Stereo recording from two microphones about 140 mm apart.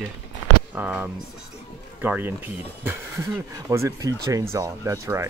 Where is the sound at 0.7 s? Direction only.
10° right (ahead or behind).